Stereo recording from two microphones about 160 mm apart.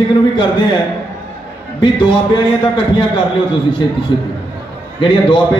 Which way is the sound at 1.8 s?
30° left (ahead or behind).